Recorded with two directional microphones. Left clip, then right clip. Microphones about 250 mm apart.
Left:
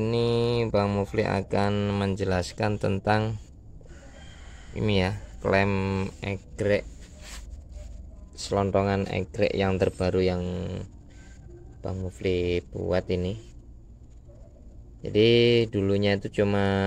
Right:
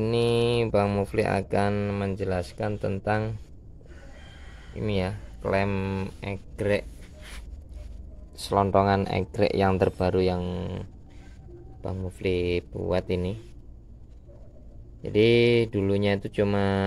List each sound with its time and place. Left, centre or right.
0.0 s mantra: centre
4.7 s mantra: centre
8.4 s speech: centre
15.0 s speech: centre